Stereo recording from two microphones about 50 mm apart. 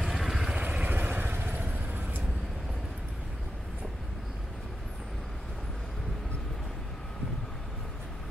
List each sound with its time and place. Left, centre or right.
0.0 s vehicle: centre
0.6 s vehicle: right